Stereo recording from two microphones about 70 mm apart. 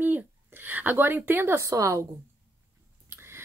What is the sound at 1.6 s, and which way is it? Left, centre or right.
Speech, right.